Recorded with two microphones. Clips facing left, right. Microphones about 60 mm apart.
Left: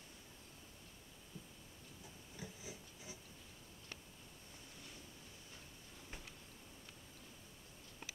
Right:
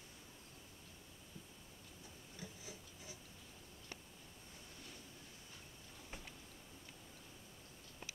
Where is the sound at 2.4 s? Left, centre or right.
Centre.